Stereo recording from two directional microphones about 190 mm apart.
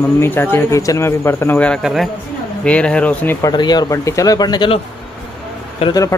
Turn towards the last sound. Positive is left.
turn(degrees=30)  # may be behind; listen again after turning